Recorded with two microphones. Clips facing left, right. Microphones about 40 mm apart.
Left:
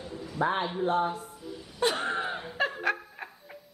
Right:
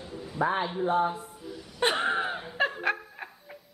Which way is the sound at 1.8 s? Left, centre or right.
Right.